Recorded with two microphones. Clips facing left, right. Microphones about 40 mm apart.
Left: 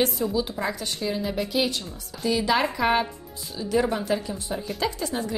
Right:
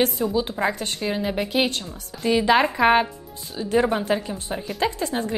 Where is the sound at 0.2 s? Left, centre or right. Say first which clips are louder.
Right 3 dB; right.